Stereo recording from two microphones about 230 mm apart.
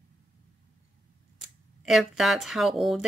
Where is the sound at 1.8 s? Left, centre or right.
Centre.